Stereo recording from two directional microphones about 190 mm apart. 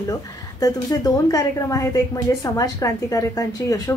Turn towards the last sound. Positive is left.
turn(degrees=20)  # may be behind; listen again after turning